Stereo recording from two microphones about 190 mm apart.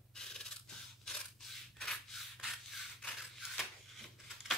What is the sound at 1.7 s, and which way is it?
Rub, centre (ahead or behind).